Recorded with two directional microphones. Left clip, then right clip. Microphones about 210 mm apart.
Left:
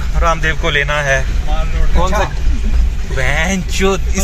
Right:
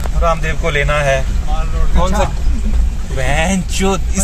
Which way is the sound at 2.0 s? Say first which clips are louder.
Left 1 dB; 15° left (ahead or behind).